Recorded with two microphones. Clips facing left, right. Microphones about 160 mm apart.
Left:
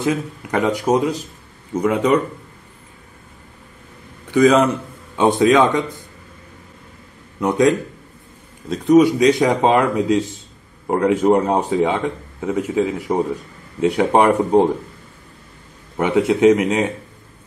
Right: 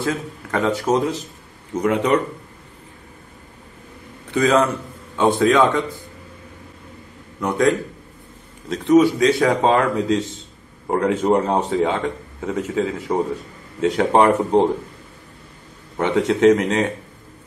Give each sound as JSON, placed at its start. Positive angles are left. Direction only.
{"t": 0.0, "sound": "speech", "side_deg": 15}
{"t": 4.3, "sound": "a man's voice", "side_deg": 15}
{"t": 7.3, "sound": "speech", "side_deg": 20}
{"t": 16.0, "sound": "speech", "side_deg": 10}